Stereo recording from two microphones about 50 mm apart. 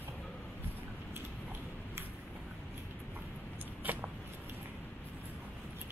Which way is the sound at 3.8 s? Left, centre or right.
Right.